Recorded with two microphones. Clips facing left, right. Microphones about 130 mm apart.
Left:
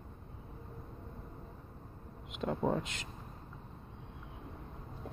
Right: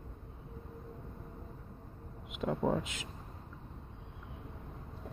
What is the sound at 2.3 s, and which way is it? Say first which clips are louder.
Speech: right 1 dB; 5° right (ahead or behind).